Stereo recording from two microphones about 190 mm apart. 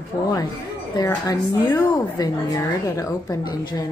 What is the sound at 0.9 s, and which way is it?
A woman's voice, 15° left (ahead or behind).